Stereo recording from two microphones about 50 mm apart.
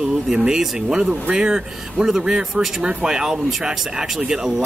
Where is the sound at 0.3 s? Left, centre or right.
Centre.